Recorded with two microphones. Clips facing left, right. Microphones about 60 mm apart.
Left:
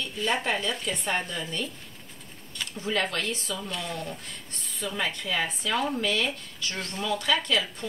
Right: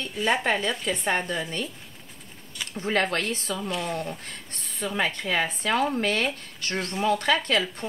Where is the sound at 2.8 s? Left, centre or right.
Right.